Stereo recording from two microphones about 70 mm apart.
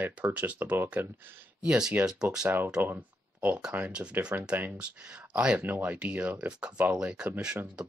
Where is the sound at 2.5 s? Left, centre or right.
Right.